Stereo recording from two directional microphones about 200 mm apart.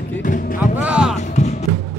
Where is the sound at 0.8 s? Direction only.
5° right (ahead or behind).